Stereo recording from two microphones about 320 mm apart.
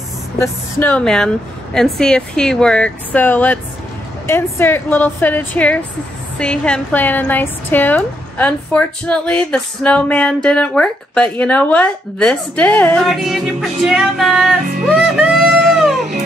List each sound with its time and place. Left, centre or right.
0.4 s a woman's voice: centre
14.8 s music: centre